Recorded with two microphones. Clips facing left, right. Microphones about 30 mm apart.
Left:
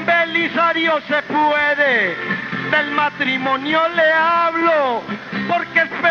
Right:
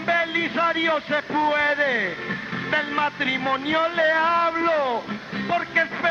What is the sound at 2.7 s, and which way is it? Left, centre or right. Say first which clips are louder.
Male singing: left 6 dB; centre.